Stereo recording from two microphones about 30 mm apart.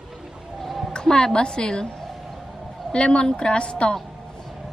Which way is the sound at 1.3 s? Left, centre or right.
Left.